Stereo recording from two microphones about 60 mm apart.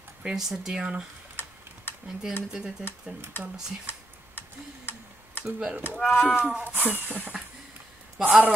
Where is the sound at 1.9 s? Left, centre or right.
Left.